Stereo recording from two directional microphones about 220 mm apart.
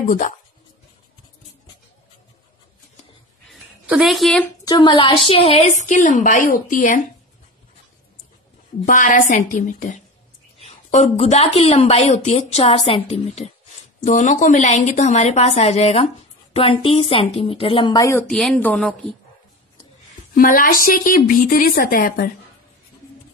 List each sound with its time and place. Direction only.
3.8 s speech: centre (ahead or behind)
4.6 s speech: 20° left (ahead or behind); by 7.0 s 40° left (ahead or behind)
8.8 s a woman's voice: 35° left (ahead or behind); by 18.2 s 15° left (ahead or behind)
18.3 s speech: 5° left (ahead or behind)
20.3 s speech: 40° left (ahead or behind)